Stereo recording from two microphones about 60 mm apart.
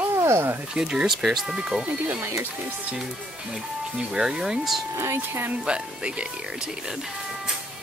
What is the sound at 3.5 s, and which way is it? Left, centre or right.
Speech, centre.